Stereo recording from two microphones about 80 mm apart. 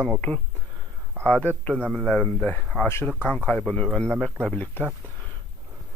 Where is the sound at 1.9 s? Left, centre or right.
Centre.